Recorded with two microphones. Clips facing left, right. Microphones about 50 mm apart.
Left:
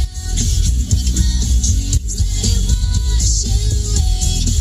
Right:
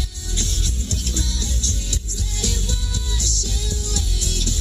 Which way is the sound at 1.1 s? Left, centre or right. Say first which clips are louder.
Left 4 dB; left.